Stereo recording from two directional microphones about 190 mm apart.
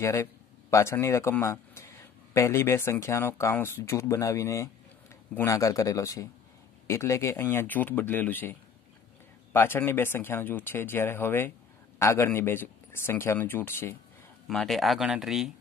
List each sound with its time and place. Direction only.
0.0 s a man's voice: 15° left (ahead or behind)
14.5 s speech: centre (ahead or behind)